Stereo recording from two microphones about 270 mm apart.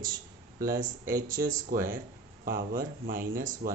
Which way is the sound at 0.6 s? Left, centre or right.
Right.